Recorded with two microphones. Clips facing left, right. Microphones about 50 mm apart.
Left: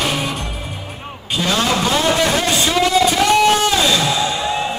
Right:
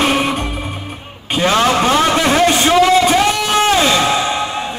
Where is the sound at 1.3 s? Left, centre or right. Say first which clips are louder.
Right 5 dB; right.